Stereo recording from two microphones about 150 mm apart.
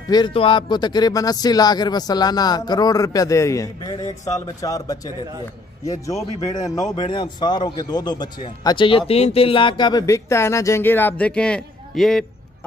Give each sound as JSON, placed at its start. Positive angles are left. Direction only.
{"t": 0.1, "sound": "a man's voice", "side_deg": 35}